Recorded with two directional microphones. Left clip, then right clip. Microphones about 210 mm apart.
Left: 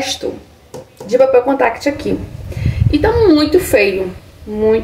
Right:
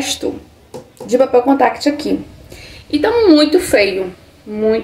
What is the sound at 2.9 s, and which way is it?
A woman's voice, 10° right (ahead or behind).